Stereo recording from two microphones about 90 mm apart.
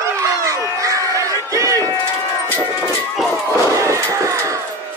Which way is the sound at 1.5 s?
35° right (ahead or behind).